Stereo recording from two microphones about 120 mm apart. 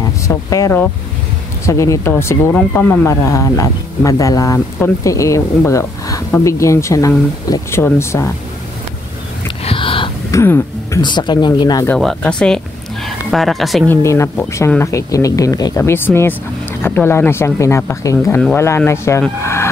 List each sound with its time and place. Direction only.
0.3 s speech: 25° left (ahead or behind)
3.1 s speech: 25° left (ahead or behind)
5.7 s a sound: 25° left (ahead or behind)
6.4 s speech: 25° left (ahead or behind)
9.7 s a sound: 45° left (ahead or behind)
10.3 s a sound: 20° left (ahead or behind)
11.0 s speech: 40° left (ahead or behind)
12.2 s speech: 10° left (ahead or behind)
13.8 s speech: 25° left (ahead or behind)
19.4 s vehicle: 20° left (ahead or behind)